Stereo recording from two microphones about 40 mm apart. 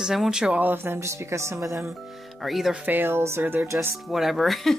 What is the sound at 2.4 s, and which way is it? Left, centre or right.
Speech, centre.